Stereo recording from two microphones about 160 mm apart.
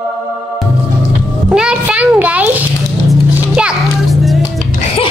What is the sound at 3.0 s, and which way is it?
Music, 5° right (ahead or behind).